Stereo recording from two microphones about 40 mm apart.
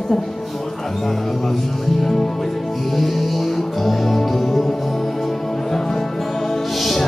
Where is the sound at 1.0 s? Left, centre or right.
Centre.